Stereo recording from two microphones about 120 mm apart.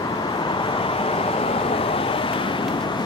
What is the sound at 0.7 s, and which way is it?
Vehicle, 50° left (ahead or behind).